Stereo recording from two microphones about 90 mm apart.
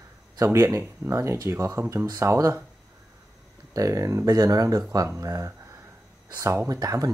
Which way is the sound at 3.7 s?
40° right (ahead or behind).